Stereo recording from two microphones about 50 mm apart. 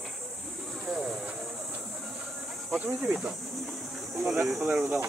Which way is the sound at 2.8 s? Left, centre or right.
Right.